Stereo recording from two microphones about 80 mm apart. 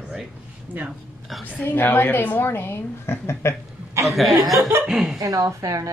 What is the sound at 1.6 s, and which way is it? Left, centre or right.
A woman's voice, left.